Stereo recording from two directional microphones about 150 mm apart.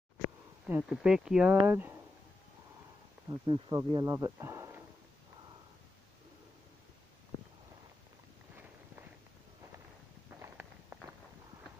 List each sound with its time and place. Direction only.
0.2 s speech: 10° right (ahead or behind)
3.3 s speech: 35° right (ahead or behind); by 4.8 s 20° right (ahead or behind)